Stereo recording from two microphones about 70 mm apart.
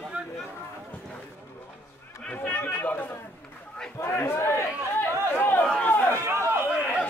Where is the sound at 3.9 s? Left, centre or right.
Left.